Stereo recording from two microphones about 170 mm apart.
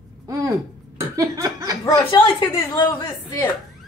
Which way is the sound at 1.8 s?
25° left (ahead or behind).